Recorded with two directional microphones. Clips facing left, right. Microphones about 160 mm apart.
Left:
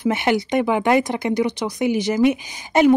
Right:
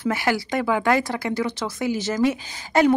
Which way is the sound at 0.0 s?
20° left (ahead or behind).